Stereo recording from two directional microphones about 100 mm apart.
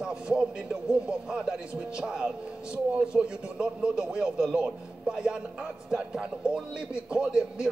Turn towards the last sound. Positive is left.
turn(degrees=-10)  # may be behind; listen again after turning